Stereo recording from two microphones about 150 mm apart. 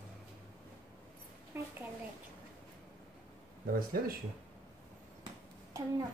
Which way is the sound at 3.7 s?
75° right (ahead or behind).